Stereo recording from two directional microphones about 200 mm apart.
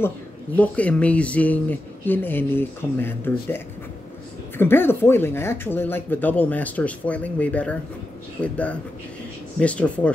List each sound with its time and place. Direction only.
0.6 s speech: 5° left (ahead or behind)